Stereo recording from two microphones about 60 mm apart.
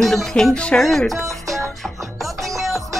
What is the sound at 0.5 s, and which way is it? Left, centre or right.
Speech, centre.